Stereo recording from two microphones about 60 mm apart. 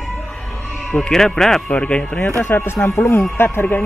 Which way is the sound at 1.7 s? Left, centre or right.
Centre.